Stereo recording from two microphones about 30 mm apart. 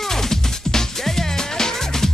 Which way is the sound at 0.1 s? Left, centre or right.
Centre.